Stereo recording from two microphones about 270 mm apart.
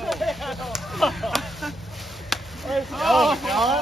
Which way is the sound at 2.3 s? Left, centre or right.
Centre.